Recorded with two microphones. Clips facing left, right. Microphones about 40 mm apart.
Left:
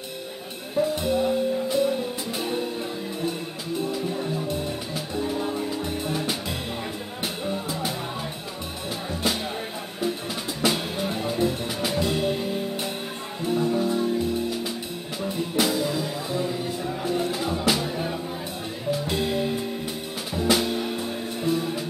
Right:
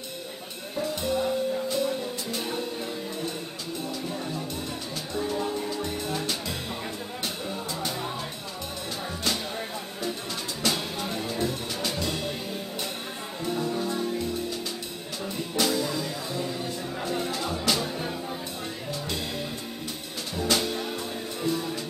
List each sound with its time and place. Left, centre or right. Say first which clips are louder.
0.7 s music: left 5 dB; centre
10.6 s music: left 4 dB; centre
13.5 s music: left 5 dB; centre